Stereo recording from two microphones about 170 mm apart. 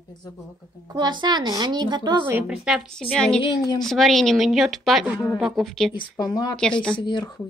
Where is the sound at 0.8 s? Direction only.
25° right (ahead or behind).